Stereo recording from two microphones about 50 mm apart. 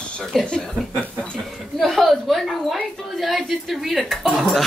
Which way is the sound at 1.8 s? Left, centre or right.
Centre.